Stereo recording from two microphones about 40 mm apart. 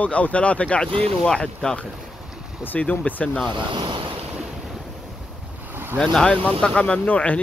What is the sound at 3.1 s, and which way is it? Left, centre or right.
Speech, left.